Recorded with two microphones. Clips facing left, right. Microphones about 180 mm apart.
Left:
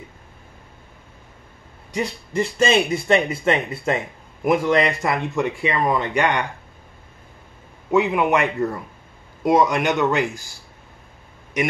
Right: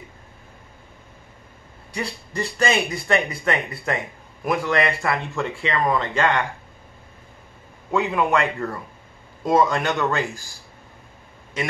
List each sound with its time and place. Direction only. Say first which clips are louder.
1.9 s speech: left 4 dB; 20° left (ahead or behind)
7.9 s speech: left 3 dB; 20° left (ahead or behind)